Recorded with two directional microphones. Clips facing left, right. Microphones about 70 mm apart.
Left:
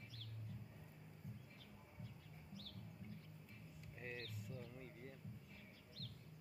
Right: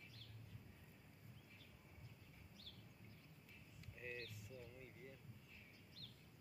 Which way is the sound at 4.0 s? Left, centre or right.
Left.